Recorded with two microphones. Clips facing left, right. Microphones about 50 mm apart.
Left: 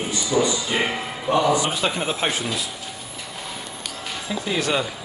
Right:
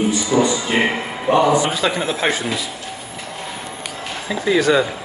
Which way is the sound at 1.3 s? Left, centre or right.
Right.